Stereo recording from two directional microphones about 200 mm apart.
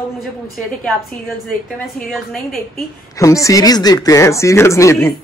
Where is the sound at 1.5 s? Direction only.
Centre (ahead or behind).